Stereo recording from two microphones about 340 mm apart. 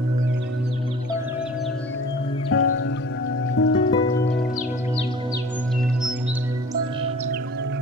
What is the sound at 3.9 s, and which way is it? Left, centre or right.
Music, centre.